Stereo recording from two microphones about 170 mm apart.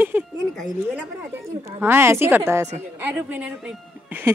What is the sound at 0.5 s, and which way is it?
Speech, centre (ahead or behind).